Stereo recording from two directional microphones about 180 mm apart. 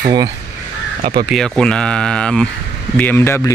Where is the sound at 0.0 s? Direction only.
25° right (ahead or behind).